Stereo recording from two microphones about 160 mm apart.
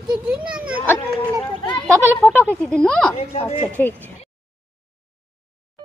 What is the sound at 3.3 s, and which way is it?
Speech, 40° left (ahead or behind).